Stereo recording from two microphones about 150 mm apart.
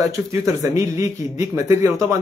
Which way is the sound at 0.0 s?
20° right (ahead or behind).